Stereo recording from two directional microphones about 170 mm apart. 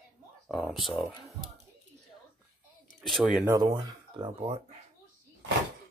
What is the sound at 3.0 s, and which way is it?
Speech, centre (ahead or behind).